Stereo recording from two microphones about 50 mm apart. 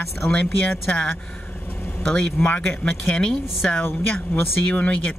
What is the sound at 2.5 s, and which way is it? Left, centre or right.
Speech, left.